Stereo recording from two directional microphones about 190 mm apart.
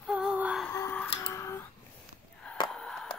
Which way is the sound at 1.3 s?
15° left (ahead or behind).